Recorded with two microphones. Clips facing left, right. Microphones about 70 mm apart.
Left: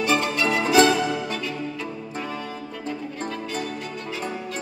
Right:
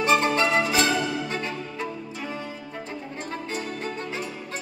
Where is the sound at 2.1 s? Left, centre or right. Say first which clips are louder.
Left 6 dB; left.